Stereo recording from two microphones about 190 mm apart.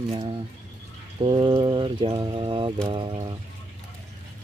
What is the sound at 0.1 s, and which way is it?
Speech, 25° right (ahead or behind).